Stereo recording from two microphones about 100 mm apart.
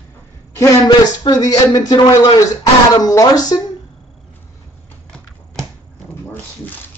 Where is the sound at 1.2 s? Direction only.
40° left (ahead or behind).